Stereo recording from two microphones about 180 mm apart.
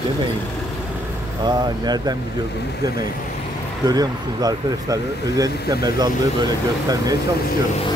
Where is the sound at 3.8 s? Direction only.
20° right (ahead or behind).